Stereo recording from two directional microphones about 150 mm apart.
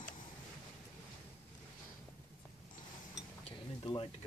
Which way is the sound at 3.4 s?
35° left (ahead or behind).